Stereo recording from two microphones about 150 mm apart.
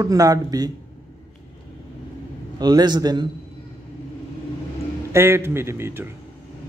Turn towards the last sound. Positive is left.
turn(degrees=-15)  # may be behind; listen again after turning